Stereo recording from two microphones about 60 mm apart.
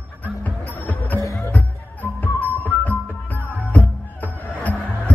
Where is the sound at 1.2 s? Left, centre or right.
Left.